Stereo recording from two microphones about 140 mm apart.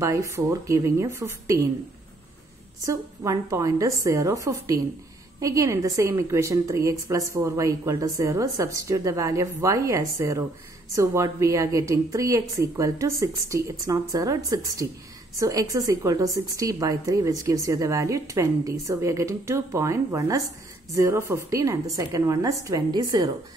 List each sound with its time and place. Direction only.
0.0 s a woman's voice: 20° right (ahead or behind)
2.8 s a woman's voice: 25° right (ahead or behind)